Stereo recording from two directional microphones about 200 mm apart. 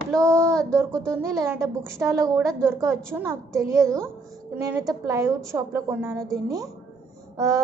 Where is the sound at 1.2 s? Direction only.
15° right (ahead or behind).